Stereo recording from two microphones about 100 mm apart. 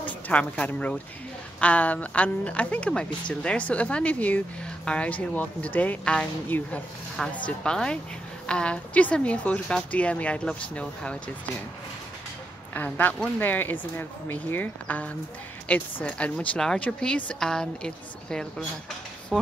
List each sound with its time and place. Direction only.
0.0 s speech: 15° left (ahead or behind)
12.7 s speech: 15° left (ahead or behind)